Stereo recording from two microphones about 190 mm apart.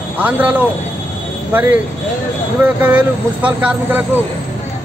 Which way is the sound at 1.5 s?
10° right (ahead or behind).